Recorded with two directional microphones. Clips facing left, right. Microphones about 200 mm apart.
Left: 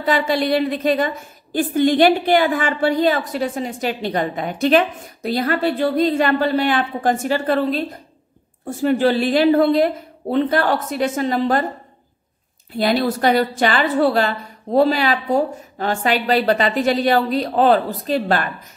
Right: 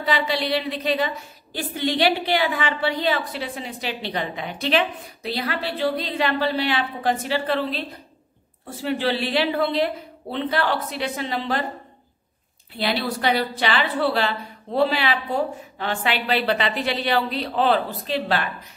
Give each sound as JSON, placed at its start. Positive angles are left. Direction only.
{"t": 0.0, "sound": "a woman's voice", "side_deg": 45}
{"t": 12.7, "sound": "a woman's voice", "side_deg": 45}